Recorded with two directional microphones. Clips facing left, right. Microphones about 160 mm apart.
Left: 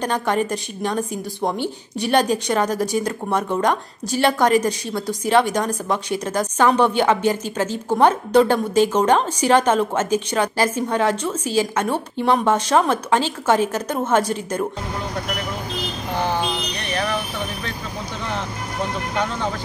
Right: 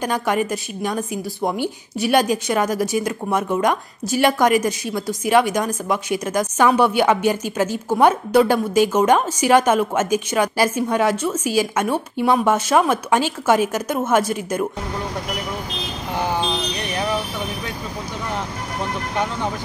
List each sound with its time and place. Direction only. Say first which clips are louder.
0.0 s a woman's voice: even; 10° right (ahead or behind)
4.1 s a woman's voice: right 1 dB; 10° right (ahead or behind)
16.9 s vehicle: even; 15° right (ahead or behind)